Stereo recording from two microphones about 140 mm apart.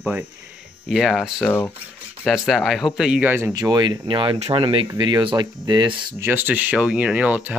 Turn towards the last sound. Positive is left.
turn(degrees=-10)  # may be behind; listen again after turning